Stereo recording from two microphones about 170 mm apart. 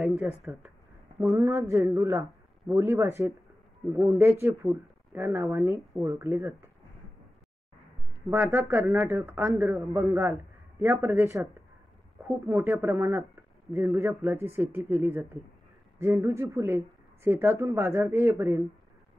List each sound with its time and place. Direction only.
0.2 s speech: 5° right (ahead or behind)
1.2 s speech: 15° right (ahead or behind)
8.3 s speech: 15° right (ahead or behind)
12.4 s speech: 15° right (ahead or behind)